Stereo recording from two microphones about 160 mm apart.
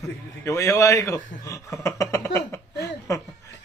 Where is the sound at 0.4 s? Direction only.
20° left (ahead or behind).